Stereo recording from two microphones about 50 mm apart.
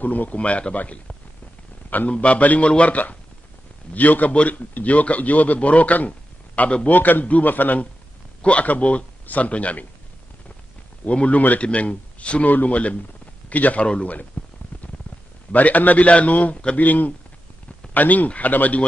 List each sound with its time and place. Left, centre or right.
0.0 s a man's voice: left
6.9 s a man's voice: left
8.4 s speech: left
11.1 s speech: left
14.4 s a sound: left
15.5 s a man's voice: left